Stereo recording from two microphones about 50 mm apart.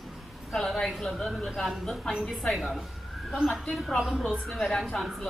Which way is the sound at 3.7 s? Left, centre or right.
Centre.